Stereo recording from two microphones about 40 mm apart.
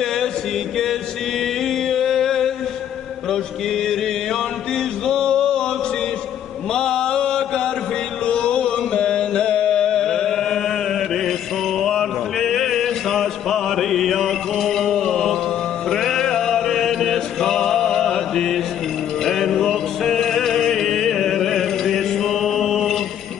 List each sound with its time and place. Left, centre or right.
0.0 s chant: centre
1.4 s a sound: centre
3.3 s mantra: centre
6.9 s chant: centre
19.2 s music: centre